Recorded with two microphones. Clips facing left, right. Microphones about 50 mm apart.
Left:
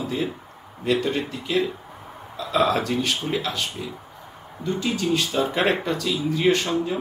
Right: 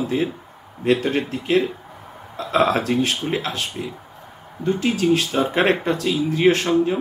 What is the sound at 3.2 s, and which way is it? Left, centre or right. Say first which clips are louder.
Speech: right 2 dB; centre.